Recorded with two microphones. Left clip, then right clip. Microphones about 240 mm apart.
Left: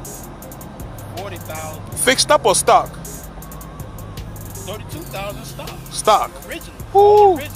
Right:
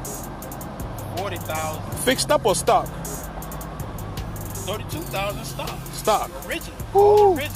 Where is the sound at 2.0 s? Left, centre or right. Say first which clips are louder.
Left 6 dB; left.